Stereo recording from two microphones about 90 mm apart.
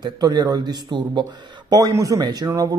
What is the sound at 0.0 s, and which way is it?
Speech, 55° right (ahead or behind).